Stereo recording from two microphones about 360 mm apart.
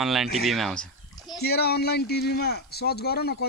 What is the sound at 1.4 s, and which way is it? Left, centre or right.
Speech, left.